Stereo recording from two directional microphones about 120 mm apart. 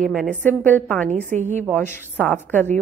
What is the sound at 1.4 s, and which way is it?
Speech, 90° right.